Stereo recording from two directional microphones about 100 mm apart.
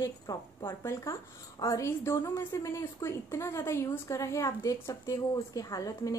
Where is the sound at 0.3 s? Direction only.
35° left (ahead or behind).